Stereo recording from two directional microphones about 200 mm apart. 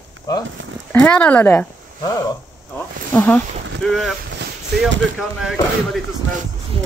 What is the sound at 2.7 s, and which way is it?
Speech, 10° left (ahead or behind).